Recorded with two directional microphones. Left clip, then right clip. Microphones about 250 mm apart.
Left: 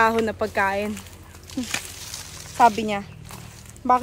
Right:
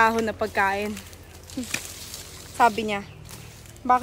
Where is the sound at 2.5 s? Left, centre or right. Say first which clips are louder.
Left 3 dB; centre.